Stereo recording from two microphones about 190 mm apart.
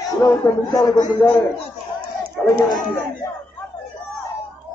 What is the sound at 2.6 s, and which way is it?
Speech, 20° left (ahead or behind).